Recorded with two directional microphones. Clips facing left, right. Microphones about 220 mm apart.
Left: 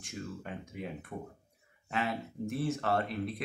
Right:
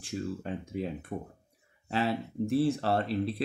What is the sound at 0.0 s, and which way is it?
Speech, 30° right (ahead or behind).